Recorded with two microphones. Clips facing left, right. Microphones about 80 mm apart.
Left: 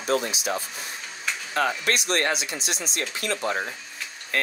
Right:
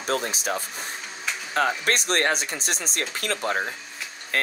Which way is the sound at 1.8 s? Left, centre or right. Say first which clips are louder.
Right 1 dB; right.